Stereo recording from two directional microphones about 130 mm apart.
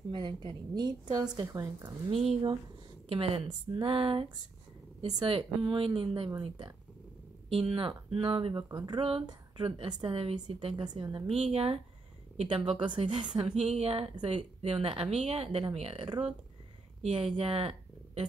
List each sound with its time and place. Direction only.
0.1 s a woman's voice: 35° right (ahead or behind)
3.1 s speech: 45° right (ahead or behind)
7.4 s a woman's voice: 50° right (ahead or behind)
10.9 s a woman's voice: 35° right (ahead or behind)
11.3 s a woman's voice: 50° right (ahead or behind)
13.6 s a woman's voice: 55° right (ahead or behind)